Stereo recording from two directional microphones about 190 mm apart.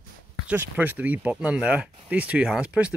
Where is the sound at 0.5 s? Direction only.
10° right (ahead or behind).